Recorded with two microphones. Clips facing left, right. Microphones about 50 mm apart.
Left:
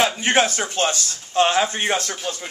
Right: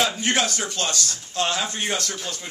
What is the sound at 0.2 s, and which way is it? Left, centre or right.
Speech, left.